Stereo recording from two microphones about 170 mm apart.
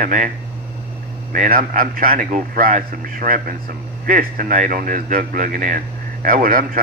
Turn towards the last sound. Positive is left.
turn(degrees=-55)  # may be behind; listen again after turning